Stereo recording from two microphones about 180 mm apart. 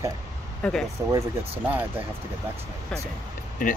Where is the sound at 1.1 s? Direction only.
15° right (ahead or behind).